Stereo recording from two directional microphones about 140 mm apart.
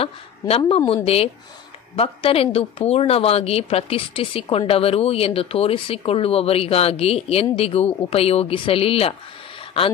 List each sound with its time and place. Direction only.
0.0 s speech: 40° left (ahead or behind)